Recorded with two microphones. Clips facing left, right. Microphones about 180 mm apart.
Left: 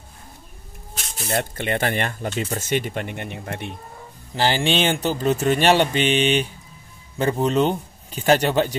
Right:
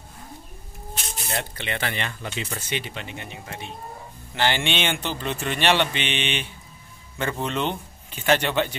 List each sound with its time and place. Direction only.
1.3 s speech: 50° left (ahead or behind)
4.4 s speech: 35° left (ahead or behind)